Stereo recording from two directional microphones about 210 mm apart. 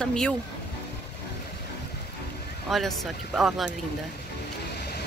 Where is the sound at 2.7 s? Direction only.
Centre (ahead or behind).